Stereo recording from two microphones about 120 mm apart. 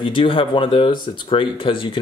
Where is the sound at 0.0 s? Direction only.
45° left (ahead or behind).